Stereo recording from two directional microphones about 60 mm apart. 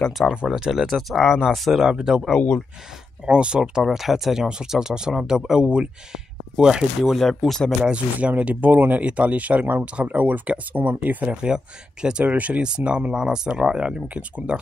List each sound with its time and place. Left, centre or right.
0.5 s speech: centre
1.9 s speech: centre
2.3 s speech: left
3.3 s speech: centre
7.2 s speech: centre
7.8 s speech: right
11.4 s speech: centre